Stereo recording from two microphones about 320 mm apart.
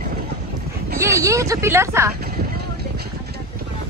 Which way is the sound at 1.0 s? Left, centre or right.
Centre.